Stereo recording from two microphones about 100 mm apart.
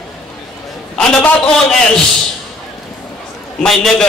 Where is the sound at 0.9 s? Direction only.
10° left (ahead or behind).